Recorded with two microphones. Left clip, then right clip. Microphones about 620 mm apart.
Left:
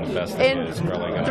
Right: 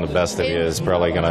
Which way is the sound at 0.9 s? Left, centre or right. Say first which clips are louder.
Right 7 dB; right.